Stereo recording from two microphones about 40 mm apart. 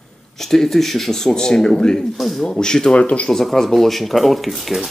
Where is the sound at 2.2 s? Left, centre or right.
Centre.